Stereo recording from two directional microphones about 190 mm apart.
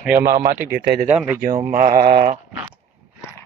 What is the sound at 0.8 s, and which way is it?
Speech, 50° right (ahead or behind).